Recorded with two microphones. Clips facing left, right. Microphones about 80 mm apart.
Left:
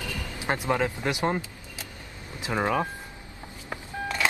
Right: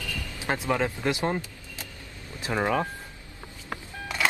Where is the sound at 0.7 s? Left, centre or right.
Centre.